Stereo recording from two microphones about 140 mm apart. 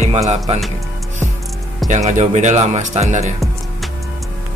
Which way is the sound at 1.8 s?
60° right (ahead or behind).